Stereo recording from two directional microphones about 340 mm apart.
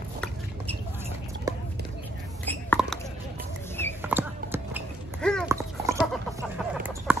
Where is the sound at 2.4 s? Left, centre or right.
Centre.